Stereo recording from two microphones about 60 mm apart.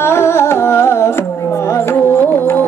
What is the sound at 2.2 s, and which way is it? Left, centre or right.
Music, left.